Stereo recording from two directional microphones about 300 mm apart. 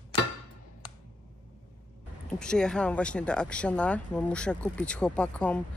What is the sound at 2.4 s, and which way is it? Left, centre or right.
Speech, centre.